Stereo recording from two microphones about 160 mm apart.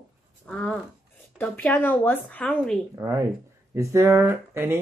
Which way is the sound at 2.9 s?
20° right (ahead or behind).